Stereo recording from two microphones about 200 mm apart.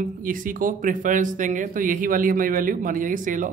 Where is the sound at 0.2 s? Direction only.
45° right (ahead or behind).